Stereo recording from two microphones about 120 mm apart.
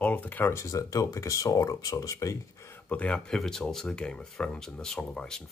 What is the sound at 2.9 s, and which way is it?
Speech, 10° left (ahead or behind).